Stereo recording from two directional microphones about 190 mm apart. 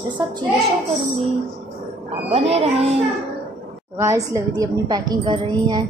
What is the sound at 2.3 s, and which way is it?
Speech, 30° right (ahead or behind).